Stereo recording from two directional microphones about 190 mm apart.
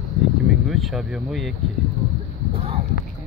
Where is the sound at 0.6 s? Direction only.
Centre (ahead or behind).